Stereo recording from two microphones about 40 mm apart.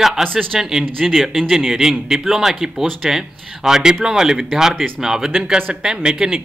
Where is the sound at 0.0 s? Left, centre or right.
Centre.